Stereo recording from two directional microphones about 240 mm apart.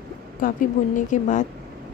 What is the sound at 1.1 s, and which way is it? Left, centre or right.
Speech, left.